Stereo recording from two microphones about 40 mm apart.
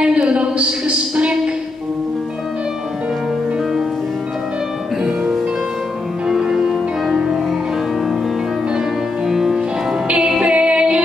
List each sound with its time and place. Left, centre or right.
0.0 s a sound: right
6.2 s music: centre
9.3 s music: centre
10.0 s music: right